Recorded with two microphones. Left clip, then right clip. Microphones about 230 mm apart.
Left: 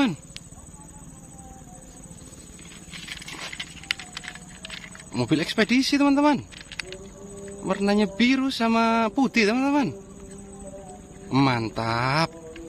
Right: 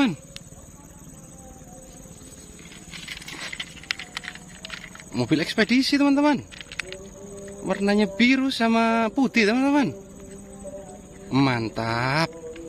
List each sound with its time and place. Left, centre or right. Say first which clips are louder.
2.9 s a sound: right 1 dB; centre
7.6 s a man's voice: right 1 dB; centre
11.2 s speech: even; centre